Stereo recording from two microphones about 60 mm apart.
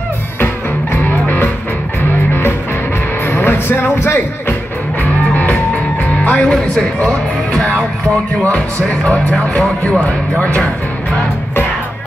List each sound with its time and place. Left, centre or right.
3.3 s music: left
6.2 s speech: left
7.5 s music: centre
9.0 s speech: centre
10.4 s speech: left